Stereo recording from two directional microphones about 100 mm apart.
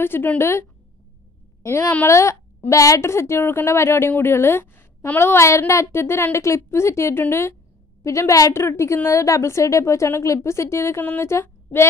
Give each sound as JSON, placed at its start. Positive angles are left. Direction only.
{"t": 0.0, "sound": "speech", "side_deg": 20}